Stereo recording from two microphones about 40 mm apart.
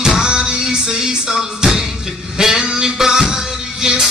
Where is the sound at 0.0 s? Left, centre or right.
Centre.